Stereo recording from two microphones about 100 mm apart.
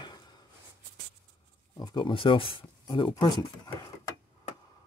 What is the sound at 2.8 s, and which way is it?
Speech, 45° left (ahead or behind).